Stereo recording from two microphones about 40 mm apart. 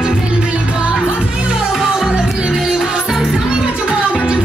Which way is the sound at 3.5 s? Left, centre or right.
Right.